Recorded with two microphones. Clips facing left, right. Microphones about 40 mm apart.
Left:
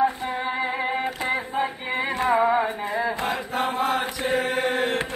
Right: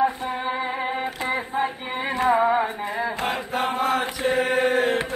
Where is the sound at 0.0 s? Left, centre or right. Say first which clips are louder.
Even; centre.